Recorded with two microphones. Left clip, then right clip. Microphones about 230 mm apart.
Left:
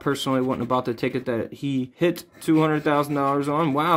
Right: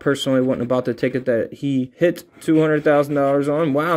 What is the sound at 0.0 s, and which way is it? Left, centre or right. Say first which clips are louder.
Speech: right 5 dB; centre.